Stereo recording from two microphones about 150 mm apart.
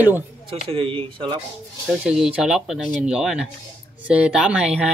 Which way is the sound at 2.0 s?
5° right (ahead or behind).